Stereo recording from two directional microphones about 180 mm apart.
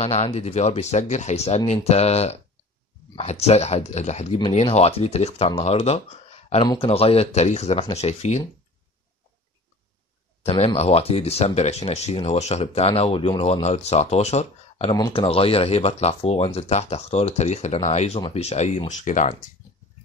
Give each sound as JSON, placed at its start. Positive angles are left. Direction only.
{"t": 0.0, "sound": "speech", "side_deg": 35}
{"t": 10.4, "sound": "speech", "side_deg": 35}
{"t": 14.9, "sound": "speech", "side_deg": 25}